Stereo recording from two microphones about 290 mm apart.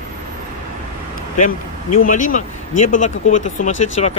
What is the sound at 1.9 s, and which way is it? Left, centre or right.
Speech, left.